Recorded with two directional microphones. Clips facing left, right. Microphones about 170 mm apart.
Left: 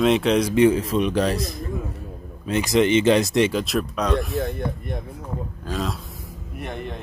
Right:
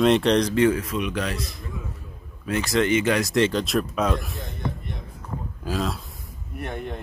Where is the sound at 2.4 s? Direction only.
20° left (ahead or behind).